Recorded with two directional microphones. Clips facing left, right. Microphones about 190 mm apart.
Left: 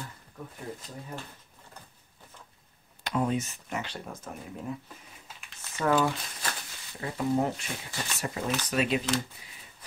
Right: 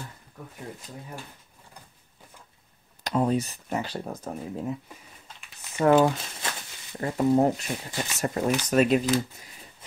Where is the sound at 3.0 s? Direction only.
35° right (ahead or behind).